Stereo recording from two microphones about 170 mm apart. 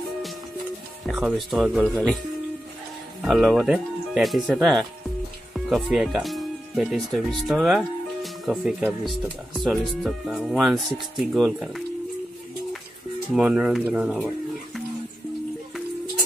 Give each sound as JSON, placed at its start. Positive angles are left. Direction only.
{"t": 1.0, "sound": "speech", "side_deg": 0}
{"t": 3.2, "sound": "speech", "side_deg": 0}
{"t": 13.3, "sound": "speech", "side_deg": -5}